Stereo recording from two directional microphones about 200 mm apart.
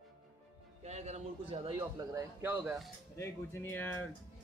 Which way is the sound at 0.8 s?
35° right (ahead or behind).